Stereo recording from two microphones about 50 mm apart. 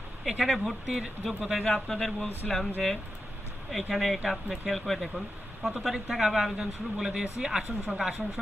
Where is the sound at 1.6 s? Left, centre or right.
Centre.